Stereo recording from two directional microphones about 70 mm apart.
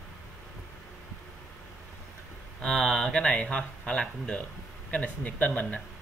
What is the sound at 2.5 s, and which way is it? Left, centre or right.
Speech, centre.